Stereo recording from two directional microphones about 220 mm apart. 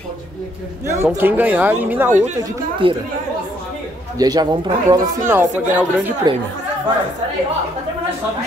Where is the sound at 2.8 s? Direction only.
25° right (ahead or behind).